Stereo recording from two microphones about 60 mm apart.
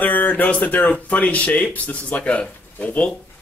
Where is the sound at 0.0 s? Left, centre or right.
Left.